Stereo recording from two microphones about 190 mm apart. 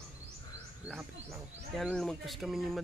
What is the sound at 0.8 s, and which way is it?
Speech, centre (ahead or behind).